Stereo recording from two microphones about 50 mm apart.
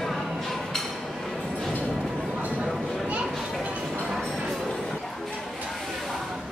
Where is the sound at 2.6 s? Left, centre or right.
Centre.